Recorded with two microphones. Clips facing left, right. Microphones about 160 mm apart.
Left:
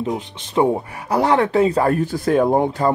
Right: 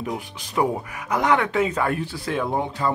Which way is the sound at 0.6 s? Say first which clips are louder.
Left 5 dB; 30° left (ahead or behind).